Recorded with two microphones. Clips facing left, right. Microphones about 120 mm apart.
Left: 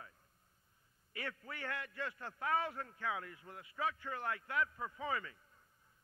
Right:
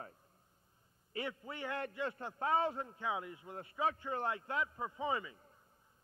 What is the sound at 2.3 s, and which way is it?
Speech, 25° right (ahead or behind).